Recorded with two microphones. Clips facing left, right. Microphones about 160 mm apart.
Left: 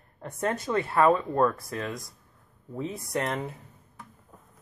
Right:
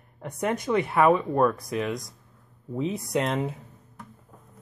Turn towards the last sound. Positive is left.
turn(degrees=-20)  # may be behind; listen again after turning